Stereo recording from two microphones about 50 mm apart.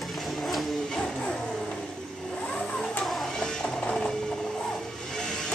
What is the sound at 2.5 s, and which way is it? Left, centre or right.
Printer, centre.